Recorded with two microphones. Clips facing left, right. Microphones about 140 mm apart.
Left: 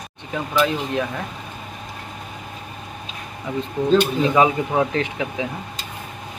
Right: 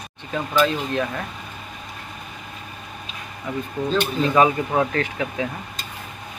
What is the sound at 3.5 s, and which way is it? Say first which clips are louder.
Speech: left 6 dB; 20° left (ahead or behind).